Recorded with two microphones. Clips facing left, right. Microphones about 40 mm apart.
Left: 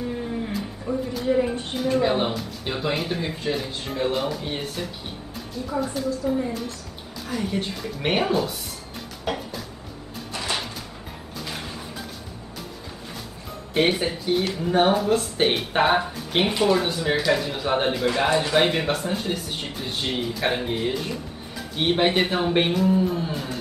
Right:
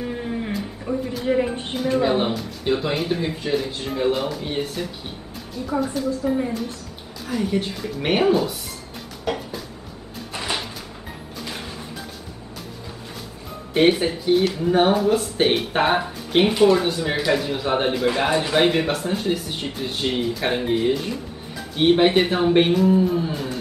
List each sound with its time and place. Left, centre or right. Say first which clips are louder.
0.0 s a sound: right 1 dB; centre
0.5 s a sound: right 2 dB; centre
1.2 s a woman's voice: right 1 dB; centre
1.8 s speech: right 2 dB; centre
6.2 s speech: right 2 dB; centre
7.2 s speech: right 4 dB; centre
9.2 s music: right 2 dB; centre
13.7 s speech: right 4 dB; centre